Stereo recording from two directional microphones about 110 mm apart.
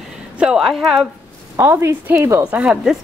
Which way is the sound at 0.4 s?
5° right (ahead or behind).